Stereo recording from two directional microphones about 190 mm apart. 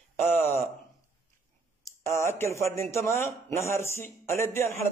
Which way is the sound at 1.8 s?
15° left (ahead or behind).